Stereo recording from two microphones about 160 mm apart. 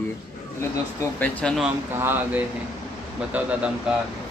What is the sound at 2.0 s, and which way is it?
Speech, 15° right (ahead or behind).